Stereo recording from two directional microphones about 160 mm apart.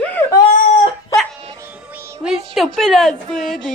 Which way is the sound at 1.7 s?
10° right (ahead or behind).